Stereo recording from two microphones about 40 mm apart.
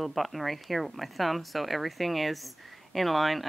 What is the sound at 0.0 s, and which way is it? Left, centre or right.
Speech, centre.